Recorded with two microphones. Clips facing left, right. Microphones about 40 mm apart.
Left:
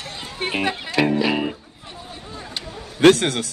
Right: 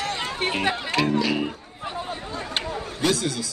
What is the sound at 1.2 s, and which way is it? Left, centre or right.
Music, centre.